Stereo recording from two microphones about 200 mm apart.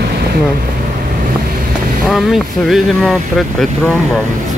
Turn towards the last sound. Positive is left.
turn(degrees=0)  # may be behind; listen again after turning